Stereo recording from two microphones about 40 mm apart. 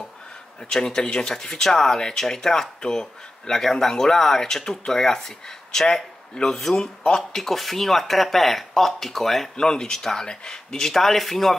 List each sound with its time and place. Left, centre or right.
0.7 s speech: centre
6.8 s speech: centre
7.3 s speech: centre